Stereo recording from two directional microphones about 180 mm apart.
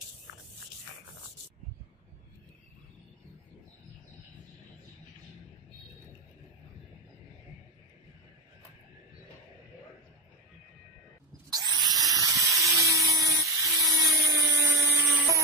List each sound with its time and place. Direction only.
11.5 s tools: 20° right (ahead or behind)
13.7 s dental drill: 20° right (ahead or behind)